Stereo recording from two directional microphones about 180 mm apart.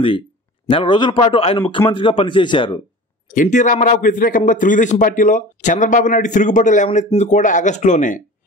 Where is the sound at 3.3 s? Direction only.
45° left (ahead or behind).